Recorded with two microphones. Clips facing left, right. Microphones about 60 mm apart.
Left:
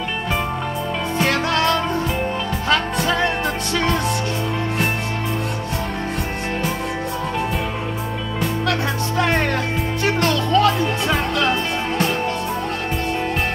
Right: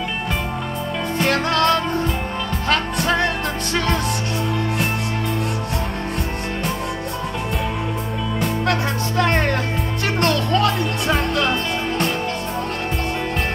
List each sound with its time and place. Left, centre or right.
1.3 s music: right
9.1 s music: right